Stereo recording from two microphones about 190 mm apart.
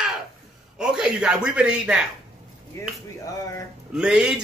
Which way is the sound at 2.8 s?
15° left (ahead or behind).